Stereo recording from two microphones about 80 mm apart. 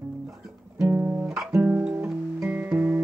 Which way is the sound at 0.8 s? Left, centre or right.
Centre.